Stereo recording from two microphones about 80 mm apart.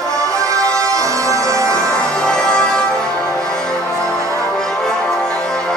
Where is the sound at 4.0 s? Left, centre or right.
Right.